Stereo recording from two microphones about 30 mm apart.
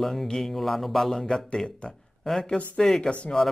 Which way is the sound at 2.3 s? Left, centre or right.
Centre.